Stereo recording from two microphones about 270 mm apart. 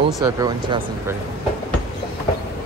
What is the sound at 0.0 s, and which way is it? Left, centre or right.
Speech, centre.